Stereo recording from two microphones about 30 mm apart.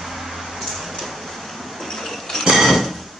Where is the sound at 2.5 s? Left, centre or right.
Centre.